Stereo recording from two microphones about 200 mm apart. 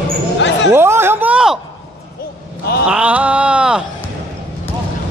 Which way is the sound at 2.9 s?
5° right (ahead or behind).